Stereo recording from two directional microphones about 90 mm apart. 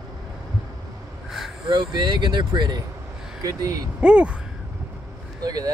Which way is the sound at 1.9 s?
55° right (ahead or behind).